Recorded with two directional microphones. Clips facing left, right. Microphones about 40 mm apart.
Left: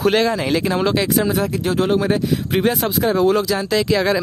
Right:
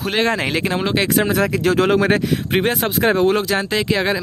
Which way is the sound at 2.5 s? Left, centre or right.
Right.